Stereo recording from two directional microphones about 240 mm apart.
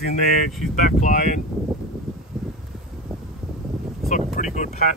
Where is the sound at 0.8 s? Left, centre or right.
Left.